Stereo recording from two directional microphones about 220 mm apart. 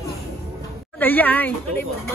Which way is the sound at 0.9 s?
10° left (ahead or behind).